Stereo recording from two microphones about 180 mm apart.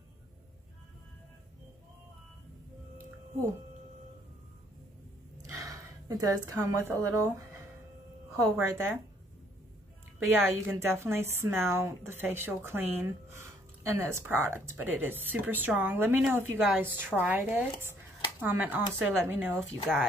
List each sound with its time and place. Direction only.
5.5 s a sound: 20° right (ahead or behind)
6.9 s speech: 15° right (ahead or behind)
8.5 s speech: 10° right (ahead or behind)
10.1 s speech: 15° right (ahead or behind)